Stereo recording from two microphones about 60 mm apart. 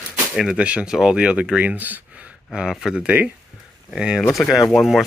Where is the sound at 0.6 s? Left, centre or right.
Centre.